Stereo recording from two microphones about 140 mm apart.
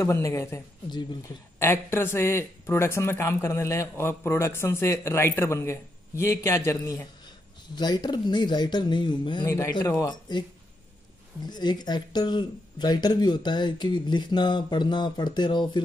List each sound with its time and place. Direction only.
0.0 s speech: 20° left (ahead or behind)
1.6 s speech: 15° left (ahead or behind)
7.7 s speech: 30° left (ahead or behind)
11.4 s speech: 30° left (ahead or behind)